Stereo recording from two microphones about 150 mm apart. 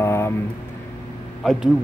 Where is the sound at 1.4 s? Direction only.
Centre (ahead or behind).